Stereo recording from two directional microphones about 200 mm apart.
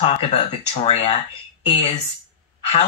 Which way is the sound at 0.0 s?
30° left (ahead or behind).